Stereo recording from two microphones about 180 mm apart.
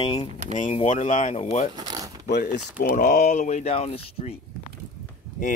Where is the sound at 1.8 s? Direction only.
20° right (ahead or behind).